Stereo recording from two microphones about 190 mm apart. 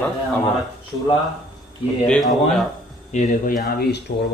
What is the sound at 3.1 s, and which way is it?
Speech, 40° left (ahead or behind).